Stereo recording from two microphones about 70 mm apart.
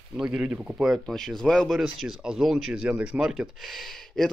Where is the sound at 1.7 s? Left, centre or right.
Centre.